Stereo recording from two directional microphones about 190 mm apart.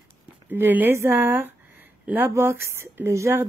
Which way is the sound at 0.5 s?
10° right (ahead or behind).